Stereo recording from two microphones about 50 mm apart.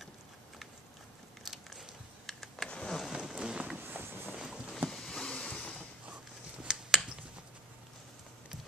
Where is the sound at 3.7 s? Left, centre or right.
Right.